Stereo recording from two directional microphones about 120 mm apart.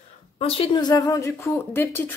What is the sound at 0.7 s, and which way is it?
Speech, 30° left (ahead or behind).